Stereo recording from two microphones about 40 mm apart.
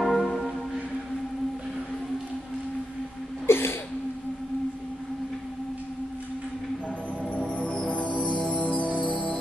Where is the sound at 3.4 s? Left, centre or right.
Left.